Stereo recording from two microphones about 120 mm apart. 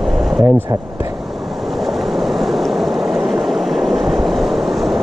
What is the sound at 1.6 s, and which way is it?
Vehicle, centre (ahead or behind).